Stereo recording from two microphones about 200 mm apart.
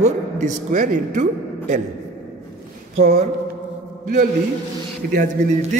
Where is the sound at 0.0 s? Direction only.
35° right (ahead or behind).